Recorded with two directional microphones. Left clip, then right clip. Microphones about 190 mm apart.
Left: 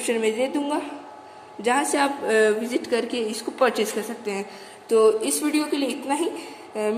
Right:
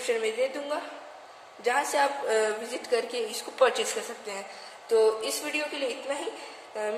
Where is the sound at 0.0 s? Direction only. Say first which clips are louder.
Left 4 dB; 25° left (ahead or behind).